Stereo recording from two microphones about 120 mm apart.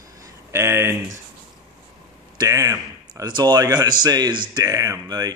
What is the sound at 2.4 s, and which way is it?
Speech, 25° right (ahead or behind).